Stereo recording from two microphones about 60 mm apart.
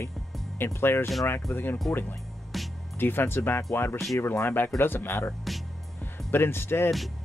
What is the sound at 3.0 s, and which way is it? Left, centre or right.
Speech, left.